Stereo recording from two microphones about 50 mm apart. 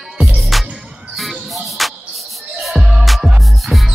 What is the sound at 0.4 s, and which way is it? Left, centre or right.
Music, centre.